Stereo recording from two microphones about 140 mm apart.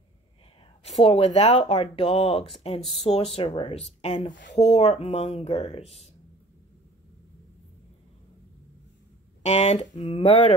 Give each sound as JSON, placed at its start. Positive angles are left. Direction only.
{"t": 0.8, "sound": "speech", "side_deg": 45}
{"t": 9.4, "sound": "speech", "side_deg": 50}